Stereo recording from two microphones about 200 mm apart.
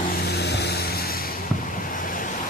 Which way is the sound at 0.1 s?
55° left (ahead or behind).